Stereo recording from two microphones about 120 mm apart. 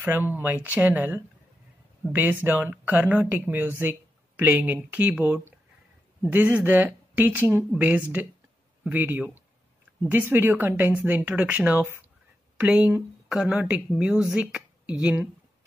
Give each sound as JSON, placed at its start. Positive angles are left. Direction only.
{"t": 0.0, "sound": "speech", "side_deg": -15}